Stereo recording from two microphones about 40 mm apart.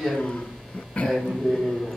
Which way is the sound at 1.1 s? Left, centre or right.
Centre.